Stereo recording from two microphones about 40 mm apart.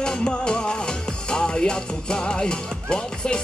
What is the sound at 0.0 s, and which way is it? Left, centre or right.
Music, left.